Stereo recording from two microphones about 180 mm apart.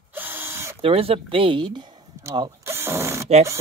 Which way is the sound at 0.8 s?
30° right (ahead or behind).